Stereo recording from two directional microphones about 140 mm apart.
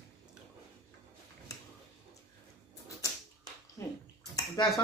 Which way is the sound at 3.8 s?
25° left (ahead or behind).